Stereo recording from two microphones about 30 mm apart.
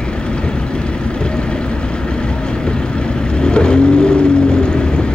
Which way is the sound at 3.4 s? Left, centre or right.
Left.